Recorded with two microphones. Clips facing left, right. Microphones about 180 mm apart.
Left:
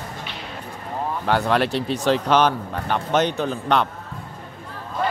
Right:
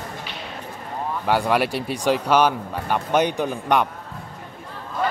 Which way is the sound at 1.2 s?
10° right (ahead or behind).